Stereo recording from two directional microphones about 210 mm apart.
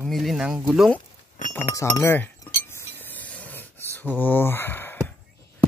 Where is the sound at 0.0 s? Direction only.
Centre (ahead or behind).